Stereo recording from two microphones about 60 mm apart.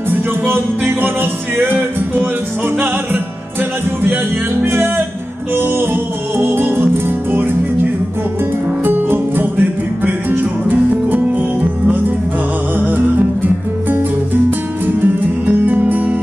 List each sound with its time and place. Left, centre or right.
0.1 s music: right
4.6 s music: right
12.7 s music: right